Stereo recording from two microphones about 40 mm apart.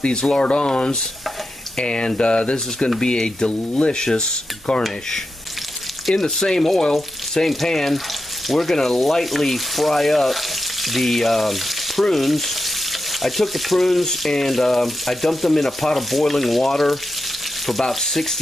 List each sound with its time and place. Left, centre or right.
0.0 s speech: left
6.2 s speech: centre
17.6 s frying: centre